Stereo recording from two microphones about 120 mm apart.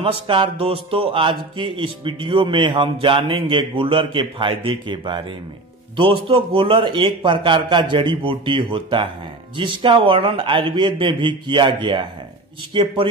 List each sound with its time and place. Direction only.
0.0 s speech: 45° right (ahead or behind)